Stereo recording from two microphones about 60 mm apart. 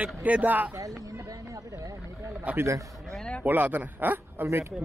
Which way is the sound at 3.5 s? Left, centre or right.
Right.